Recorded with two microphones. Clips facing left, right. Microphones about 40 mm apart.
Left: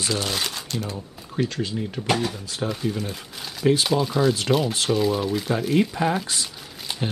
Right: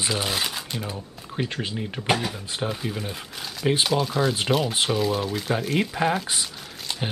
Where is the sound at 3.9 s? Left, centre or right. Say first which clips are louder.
Left 2 dB; centre.